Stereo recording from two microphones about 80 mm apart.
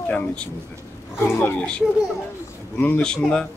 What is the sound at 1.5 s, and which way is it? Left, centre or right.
Speech, centre.